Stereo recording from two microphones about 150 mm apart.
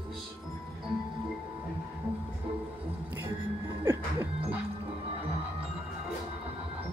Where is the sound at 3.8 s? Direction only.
15° right (ahead or behind).